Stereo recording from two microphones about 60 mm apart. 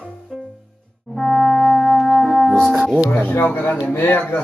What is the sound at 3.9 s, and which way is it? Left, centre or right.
Speech, left.